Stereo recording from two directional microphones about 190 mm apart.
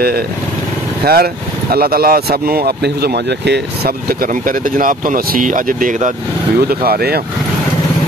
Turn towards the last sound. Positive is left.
turn(degrees=-55)  # may be behind; listen again after turning